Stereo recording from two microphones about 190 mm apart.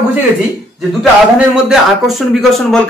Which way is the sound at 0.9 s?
5° right (ahead or behind).